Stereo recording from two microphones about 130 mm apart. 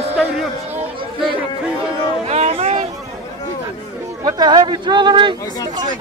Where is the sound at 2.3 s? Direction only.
55° right (ahead or behind).